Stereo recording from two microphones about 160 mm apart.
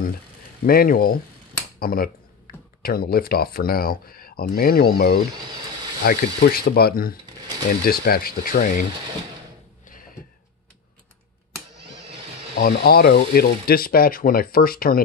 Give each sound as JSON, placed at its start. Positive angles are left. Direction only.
{"t": 0.7, "sound": "speech", "side_deg": 65}
{"t": 2.5, "sound": "a sound", "side_deg": 70}
{"t": 2.8, "sound": "speech", "side_deg": 70}
{"t": 12.5, "sound": "speech", "side_deg": 75}